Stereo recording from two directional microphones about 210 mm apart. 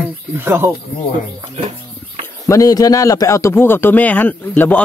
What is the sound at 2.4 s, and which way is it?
Speech, 15° left (ahead or behind).